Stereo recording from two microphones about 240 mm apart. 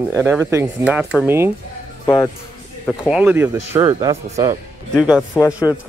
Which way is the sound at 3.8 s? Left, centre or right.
Right.